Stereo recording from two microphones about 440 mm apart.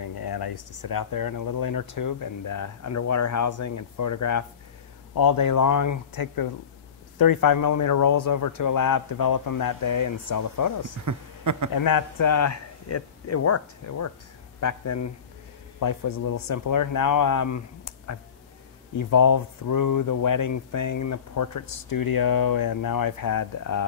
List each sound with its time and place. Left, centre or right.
0.0 s speech: left
11.1 s speech: right
11.7 s speech: left